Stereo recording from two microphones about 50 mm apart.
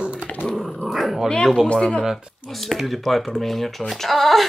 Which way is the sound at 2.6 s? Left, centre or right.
Centre.